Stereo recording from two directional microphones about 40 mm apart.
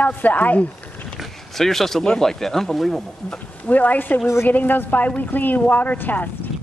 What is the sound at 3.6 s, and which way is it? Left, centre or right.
Speech, left.